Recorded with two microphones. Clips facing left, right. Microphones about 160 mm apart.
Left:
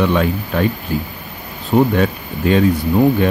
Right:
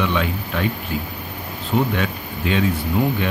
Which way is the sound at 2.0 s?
40° left (ahead or behind).